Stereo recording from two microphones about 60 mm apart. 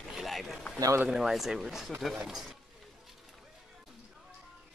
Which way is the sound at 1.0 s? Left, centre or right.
Centre.